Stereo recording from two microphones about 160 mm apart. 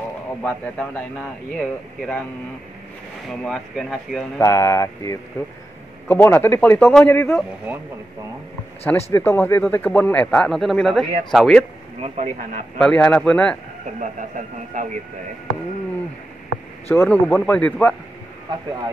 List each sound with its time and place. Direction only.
0.4 s a man's voice: 10° left (ahead or behind)
3.3 s speech: centre (ahead or behind)
4.4 s a man's voice: 20° left (ahead or behind)
7.3 s speech: 10° right (ahead or behind)
8.8 s a man's voice: 15° left (ahead or behind)
12.0 s speech: 45° right (ahead or behind)
12.7 s a man's voice: 5° left (ahead or behind)
14.3 s speech: 55° right (ahead or behind)
16.9 s a man's voice: 10° left (ahead or behind)